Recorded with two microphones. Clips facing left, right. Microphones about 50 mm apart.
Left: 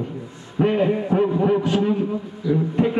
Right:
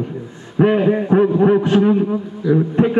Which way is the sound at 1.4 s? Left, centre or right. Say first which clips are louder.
Right 6 dB; right.